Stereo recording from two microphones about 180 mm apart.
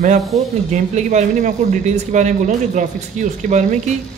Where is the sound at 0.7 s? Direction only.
40° right (ahead or behind).